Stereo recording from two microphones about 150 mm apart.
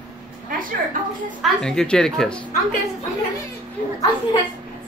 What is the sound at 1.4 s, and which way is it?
Speech, 5° left (ahead or behind).